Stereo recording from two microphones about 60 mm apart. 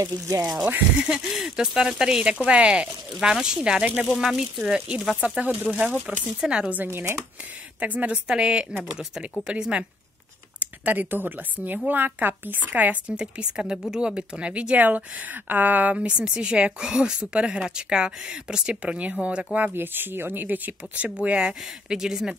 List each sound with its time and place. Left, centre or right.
0.9 s speech: centre
6.9 s speech: right
7.8 s speech: right
10.6 s speech: right
13.1 s speech: centre
19.7 s speech: right; by 22.3 s centre